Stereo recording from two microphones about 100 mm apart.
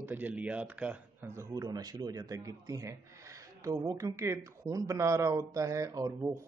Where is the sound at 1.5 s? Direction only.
40° right (ahead or behind).